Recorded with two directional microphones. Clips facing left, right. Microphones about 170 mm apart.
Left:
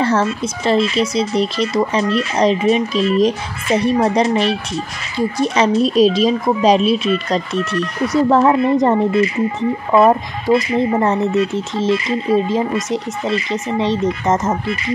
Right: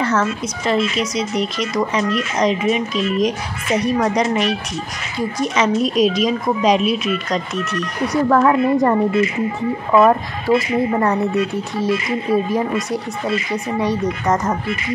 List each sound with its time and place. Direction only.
0.0 s speech: 30° left (ahead or behind)
9.9 s speech: 30° left (ahead or behind)